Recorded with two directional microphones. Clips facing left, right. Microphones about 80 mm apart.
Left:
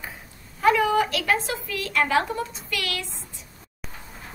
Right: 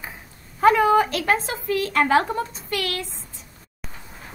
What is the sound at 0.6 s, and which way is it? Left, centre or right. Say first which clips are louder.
A woman's voice: right 4 dB; right.